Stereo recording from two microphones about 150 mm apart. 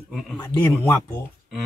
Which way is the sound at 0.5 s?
10° left (ahead or behind).